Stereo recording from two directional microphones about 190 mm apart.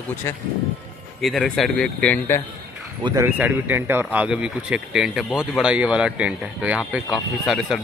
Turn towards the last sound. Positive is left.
turn(degrees=0)  # may be behind; listen again after turning